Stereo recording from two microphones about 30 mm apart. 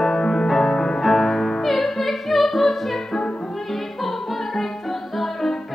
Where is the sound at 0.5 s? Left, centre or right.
Centre.